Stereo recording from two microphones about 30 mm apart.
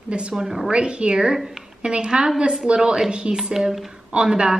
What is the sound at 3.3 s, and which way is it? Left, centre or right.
A woman's voice, right.